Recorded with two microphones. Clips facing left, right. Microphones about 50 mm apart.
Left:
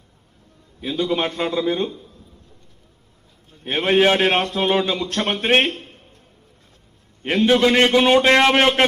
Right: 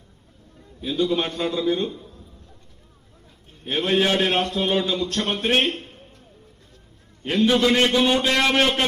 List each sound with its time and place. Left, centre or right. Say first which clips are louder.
0.7 s a man's voice: left 1 dB; left
3.6 s a man's voice: left 4 dB; left
7.2 s a man's voice: left 3 dB; left